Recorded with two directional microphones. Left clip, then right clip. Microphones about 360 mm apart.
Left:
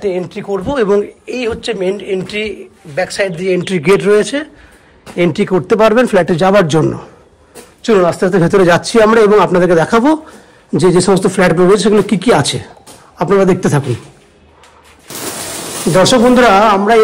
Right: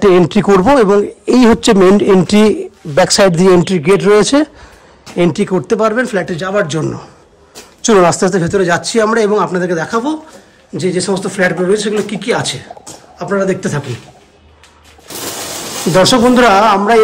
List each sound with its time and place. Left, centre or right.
0.0 s speech: centre
0.8 s speech: centre
15.9 s speech: centre